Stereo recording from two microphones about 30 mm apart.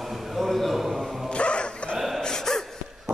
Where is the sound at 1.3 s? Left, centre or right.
Left.